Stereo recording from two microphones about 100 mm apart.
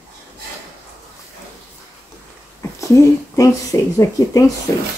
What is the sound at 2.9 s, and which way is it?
Speech, 30° left (ahead or behind).